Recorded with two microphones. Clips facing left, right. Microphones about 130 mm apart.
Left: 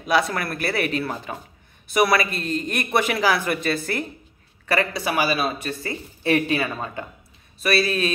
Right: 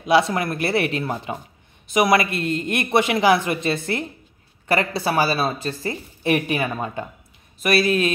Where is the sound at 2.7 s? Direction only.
25° right (ahead or behind).